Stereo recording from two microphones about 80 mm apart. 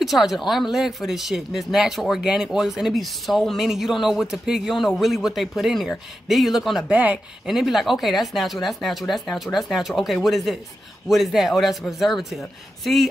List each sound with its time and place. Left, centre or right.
0.0 s speech: centre
6.9 s speech: centre
7.4 s speech: centre